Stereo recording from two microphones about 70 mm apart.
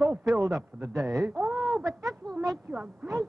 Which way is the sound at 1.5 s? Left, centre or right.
Right.